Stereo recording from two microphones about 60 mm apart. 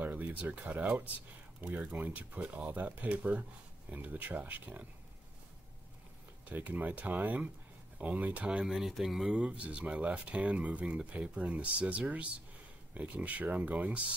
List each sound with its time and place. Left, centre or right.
0.0 s speech: right
6.4 s speech: right; by 9.3 s centre
9.3 s speech: centre